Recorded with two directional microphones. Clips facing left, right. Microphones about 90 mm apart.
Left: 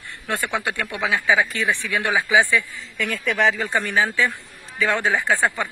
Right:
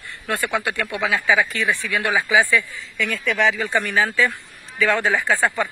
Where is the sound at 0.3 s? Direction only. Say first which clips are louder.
Right 2 dB; 20° left (ahead or behind).